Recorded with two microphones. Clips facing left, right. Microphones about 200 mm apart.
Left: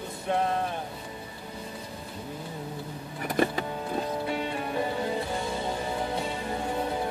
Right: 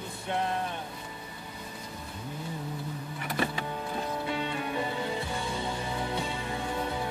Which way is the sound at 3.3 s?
45° left (ahead or behind).